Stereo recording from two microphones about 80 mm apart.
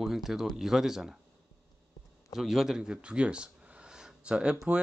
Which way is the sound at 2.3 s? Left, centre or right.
Centre.